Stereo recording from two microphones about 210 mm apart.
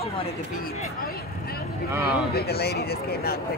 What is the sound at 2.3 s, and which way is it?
Speech, 50° left (ahead or behind).